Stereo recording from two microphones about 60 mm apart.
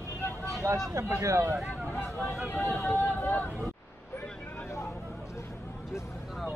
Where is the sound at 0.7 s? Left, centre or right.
Right.